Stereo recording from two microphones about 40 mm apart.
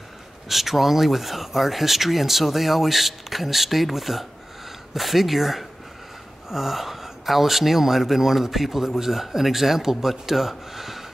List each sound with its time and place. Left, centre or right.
0.5 s speech: centre